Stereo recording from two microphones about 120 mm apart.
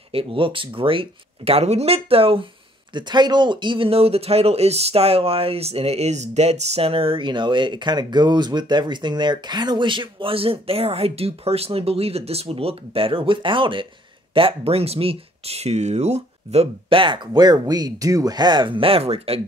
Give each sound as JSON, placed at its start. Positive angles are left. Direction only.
{"t": 0.1, "sound": "speech", "side_deg": -50}
{"t": 2.9, "sound": "speech", "side_deg": -40}
{"t": 16.9, "sound": "speech", "side_deg": -45}